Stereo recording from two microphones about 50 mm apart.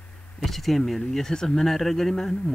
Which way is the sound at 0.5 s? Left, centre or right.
Centre.